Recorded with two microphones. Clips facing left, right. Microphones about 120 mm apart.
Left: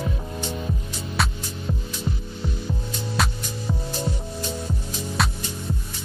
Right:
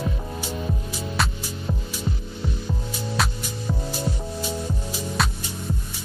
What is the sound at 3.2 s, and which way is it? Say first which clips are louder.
Music: left 1 dB; centre (ahead or behind).